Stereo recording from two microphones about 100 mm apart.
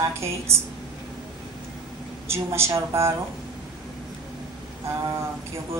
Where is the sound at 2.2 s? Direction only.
25° right (ahead or behind).